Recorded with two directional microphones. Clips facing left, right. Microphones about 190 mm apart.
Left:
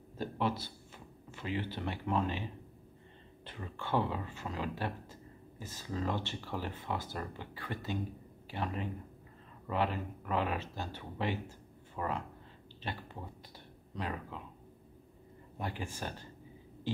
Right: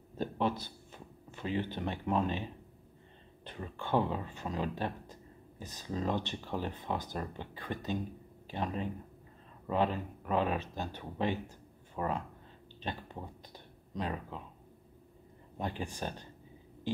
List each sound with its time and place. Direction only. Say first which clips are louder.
0.2 s a sound: right 2 dB; 15° right (ahead or behind)
3.4 s speech: right 2 dB; 15° right (ahead or behind)
15.8 s speech: right 2 dB; 15° right (ahead or behind)